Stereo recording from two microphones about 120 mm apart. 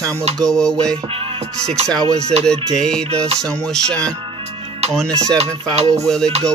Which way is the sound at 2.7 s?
5° left (ahead or behind).